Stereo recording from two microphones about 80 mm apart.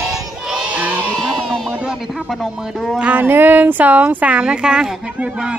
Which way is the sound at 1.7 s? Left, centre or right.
Centre.